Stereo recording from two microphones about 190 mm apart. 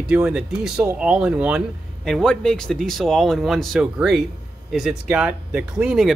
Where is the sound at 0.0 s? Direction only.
5° right (ahead or behind).